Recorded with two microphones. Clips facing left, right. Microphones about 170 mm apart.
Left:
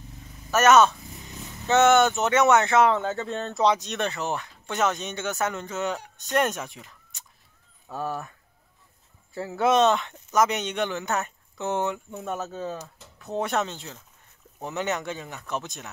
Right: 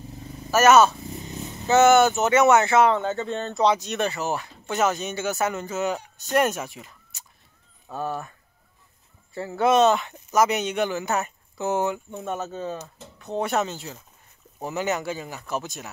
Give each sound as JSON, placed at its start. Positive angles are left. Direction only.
{"t": 0.5, "sound": "speech", "side_deg": -5}
{"t": 1.1, "sound": "a sound", "side_deg": -25}
{"t": 1.7, "sound": "speech", "side_deg": -5}